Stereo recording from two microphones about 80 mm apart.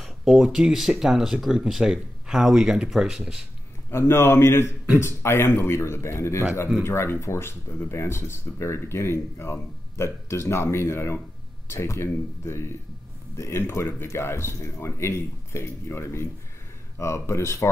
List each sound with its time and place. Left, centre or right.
0.0 s speech: centre
3.9 s speech: left